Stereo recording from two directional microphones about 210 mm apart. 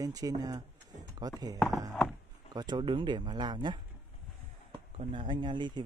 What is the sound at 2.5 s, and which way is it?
Speech, 20° right (ahead or behind).